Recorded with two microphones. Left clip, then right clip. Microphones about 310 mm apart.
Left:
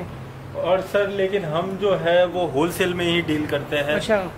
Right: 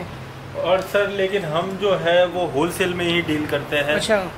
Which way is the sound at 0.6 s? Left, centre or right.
Centre.